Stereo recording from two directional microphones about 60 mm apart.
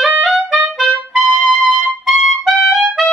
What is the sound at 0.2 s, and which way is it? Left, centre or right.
Music, centre.